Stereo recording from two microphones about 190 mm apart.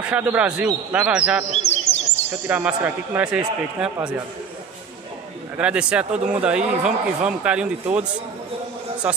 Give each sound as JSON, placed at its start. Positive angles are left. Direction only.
{"t": 0.0, "sound": "a man's voice", "side_deg": -5}
{"t": 1.5, "sound": "chirp", "side_deg": 35}
{"t": 2.4, "sound": "a man's voice", "side_deg": -10}
{"t": 5.6, "sound": "a man's voice", "side_deg": -5}